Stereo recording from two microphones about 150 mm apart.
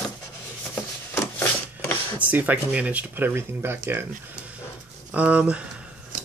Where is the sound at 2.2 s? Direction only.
10° right (ahead or behind).